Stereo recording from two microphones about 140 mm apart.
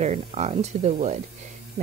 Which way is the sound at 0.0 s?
50° right (ahead or behind).